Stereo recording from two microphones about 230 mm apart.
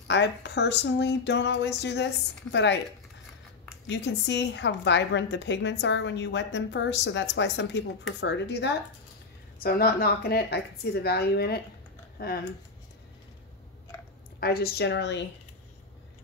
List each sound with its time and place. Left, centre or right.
0.1 s a woman's voice: left
3.8 s a woman's voice: left
14.4 s a woman's voice: left